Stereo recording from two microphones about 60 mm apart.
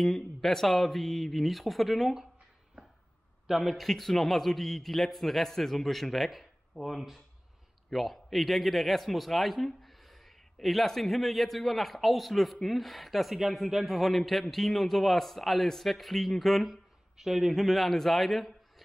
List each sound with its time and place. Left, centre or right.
0.0 s a man's voice: centre
3.4 s a man's voice: centre